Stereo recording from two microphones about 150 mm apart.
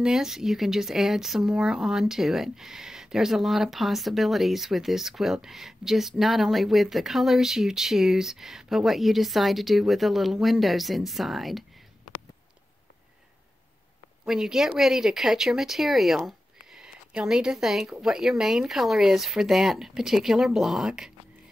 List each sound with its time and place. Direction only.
0.0 s speech: 5° right (ahead or behind)
14.2 s speech: 5° right (ahead or behind)